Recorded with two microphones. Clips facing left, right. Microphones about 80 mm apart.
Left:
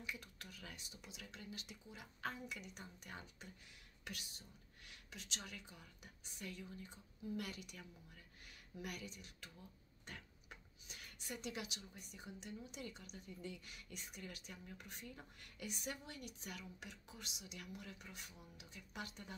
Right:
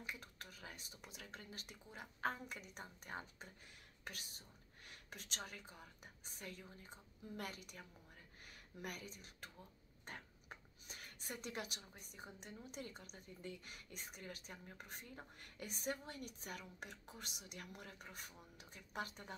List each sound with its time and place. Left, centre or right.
0.0 s a woman's voice: right
10.0 s a sound: right
12.0 s a woman's voice: right